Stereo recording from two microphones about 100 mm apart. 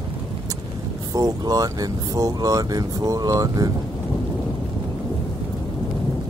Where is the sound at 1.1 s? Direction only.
35° right (ahead or behind).